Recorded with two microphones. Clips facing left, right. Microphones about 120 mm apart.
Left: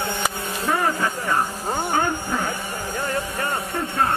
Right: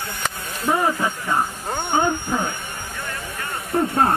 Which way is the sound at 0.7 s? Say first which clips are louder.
Right 2 dB; 15° right (ahead or behind).